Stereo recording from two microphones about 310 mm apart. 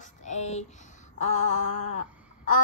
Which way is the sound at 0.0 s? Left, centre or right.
Left.